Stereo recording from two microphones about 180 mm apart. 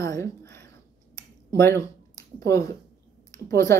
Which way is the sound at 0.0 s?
15° left (ahead or behind).